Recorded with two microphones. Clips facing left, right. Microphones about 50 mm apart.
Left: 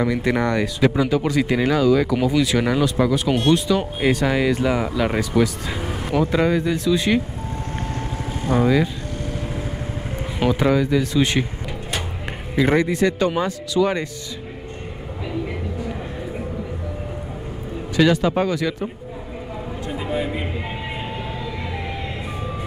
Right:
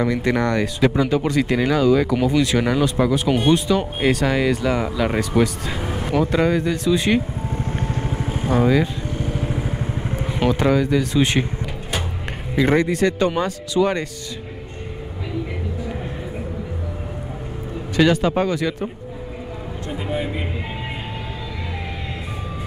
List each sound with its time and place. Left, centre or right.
0.0 s speech: centre
0.7 s speech: centre
1.9 s speech: centre
4.1 s speech: centre
8.0 s vehicle: right
8.5 s speech: centre
9.1 s vehicle: centre
12.5 s speech: centre
18.2 s speech: centre
19.9 s speech: centre